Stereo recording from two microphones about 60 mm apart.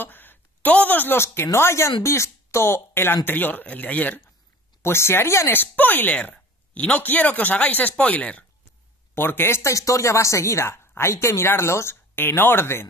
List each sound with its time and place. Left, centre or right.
0.0 s a woman's voice: left
4.8 s speech: left
5.5 s speech: left
9.1 s speech: left